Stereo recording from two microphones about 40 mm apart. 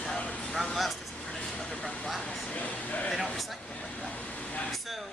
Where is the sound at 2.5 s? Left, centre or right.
Left.